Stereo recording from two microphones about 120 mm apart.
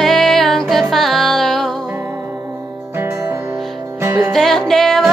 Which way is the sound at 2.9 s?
20° right (ahead or behind).